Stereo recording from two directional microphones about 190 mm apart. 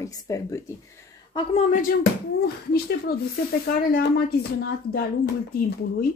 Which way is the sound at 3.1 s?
55° left (ahead or behind).